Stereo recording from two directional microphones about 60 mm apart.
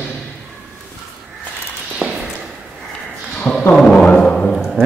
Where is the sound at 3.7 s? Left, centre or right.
Centre.